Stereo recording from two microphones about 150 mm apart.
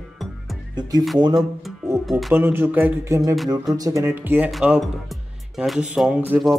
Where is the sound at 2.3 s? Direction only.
15° right (ahead or behind).